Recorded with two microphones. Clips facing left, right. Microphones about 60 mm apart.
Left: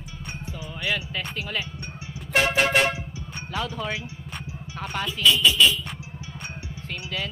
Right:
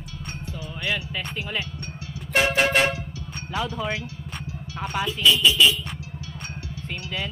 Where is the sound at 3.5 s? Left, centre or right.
Centre.